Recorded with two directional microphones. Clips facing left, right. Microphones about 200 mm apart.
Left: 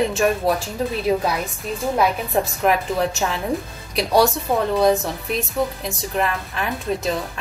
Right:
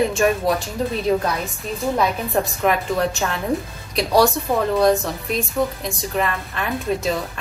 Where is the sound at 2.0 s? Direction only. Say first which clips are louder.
Left 2 dB; centre (ahead or behind).